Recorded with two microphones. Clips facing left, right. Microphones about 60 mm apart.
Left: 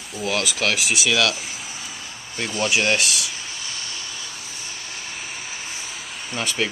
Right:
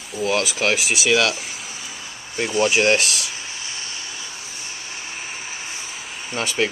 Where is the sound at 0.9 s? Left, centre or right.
Centre.